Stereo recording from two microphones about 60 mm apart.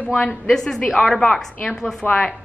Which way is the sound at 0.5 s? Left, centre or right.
Centre.